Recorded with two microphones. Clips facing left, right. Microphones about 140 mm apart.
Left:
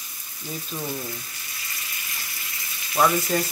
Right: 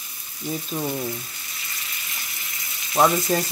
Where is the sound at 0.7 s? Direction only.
25° right (ahead or behind).